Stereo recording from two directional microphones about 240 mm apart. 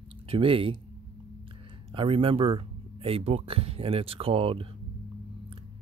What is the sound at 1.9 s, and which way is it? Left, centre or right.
Speech, right.